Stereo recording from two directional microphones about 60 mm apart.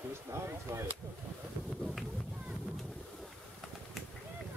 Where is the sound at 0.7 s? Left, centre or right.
Right.